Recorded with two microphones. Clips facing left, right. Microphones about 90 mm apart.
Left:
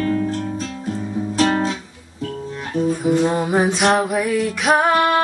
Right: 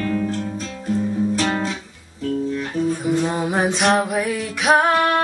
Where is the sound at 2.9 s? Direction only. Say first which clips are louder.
Left 4 dB; centre (ahead or behind).